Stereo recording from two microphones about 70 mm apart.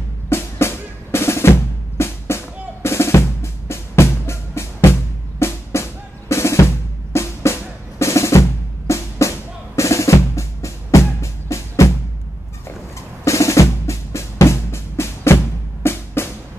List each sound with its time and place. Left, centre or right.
0.3 s drum: left
13.2 s drum: left